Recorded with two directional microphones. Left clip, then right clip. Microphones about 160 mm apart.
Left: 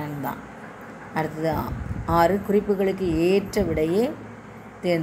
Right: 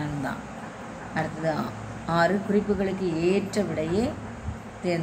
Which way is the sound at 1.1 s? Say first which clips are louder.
Left 3 dB; 40° left (ahead or behind).